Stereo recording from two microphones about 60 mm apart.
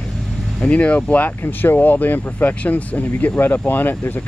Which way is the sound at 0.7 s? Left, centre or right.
Left.